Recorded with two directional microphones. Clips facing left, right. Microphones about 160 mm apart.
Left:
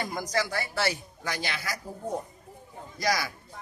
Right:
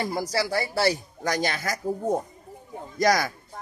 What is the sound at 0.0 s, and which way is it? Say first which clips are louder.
A man's voice: right 3 dB; 30° right (ahead or behind).